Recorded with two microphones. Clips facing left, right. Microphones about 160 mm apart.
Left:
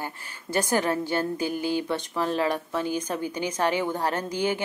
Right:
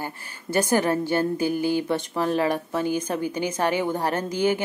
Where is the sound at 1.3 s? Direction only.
10° right (ahead or behind).